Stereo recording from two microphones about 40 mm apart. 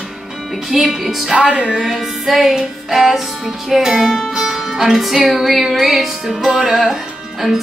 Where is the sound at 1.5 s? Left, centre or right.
Right.